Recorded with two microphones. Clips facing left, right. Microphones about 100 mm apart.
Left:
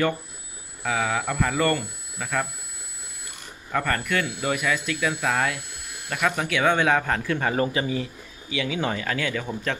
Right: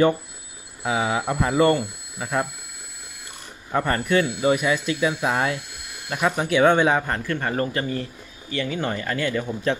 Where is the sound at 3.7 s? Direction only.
25° right (ahead or behind).